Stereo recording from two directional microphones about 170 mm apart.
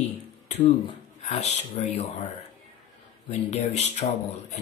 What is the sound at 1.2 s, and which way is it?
Speech, 45° left (ahead or behind).